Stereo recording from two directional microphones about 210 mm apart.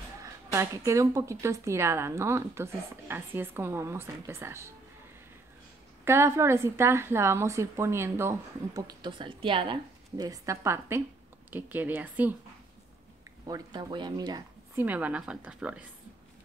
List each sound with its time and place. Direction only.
0.5 s a woman's voice: 15° right (ahead or behind)
6.0 s a woman's voice: 10° right (ahead or behind)
13.5 s speech: 20° right (ahead or behind)
14.9 s a woman's voice: 5° right (ahead or behind)